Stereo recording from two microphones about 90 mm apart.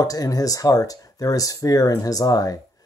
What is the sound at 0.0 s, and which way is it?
Speech, 40° left (ahead or behind).